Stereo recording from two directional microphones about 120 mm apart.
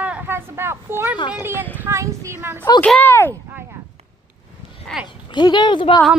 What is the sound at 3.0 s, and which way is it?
Speech, 20° left (ahead or behind).